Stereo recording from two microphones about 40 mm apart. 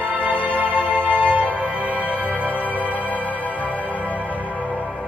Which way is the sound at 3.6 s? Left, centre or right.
Left.